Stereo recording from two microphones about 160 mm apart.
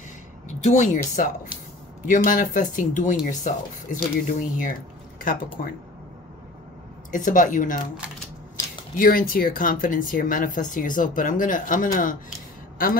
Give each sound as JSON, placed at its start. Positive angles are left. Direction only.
{"t": 0.7, "sound": "speech", "side_deg": 50}
{"t": 7.1, "sound": "speech", "side_deg": 50}
{"t": 8.9, "sound": "speech", "side_deg": 60}